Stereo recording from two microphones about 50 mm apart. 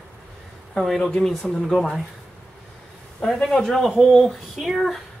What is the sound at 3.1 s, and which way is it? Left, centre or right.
Speech, left.